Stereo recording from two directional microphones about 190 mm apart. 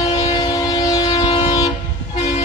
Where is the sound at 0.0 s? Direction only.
20° left (ahead or behind).